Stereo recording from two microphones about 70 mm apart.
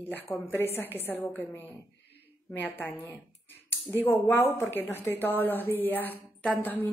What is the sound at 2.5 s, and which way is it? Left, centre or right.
Speech, left.